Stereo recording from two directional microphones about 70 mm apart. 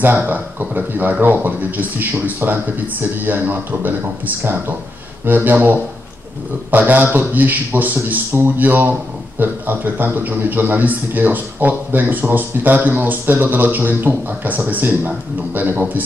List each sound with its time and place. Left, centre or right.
0.0 s a man's voice: right
5.2 s a man's voice: right